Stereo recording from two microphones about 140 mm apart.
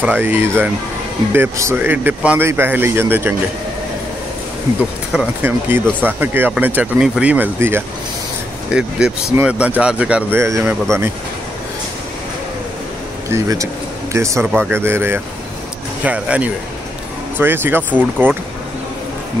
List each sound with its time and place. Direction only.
0.0 s speech: 15° right (ahead or behind)
5.1 s speech: 10° right (ahead or behind)
13.3 s speech: 25° right (ahead or behind)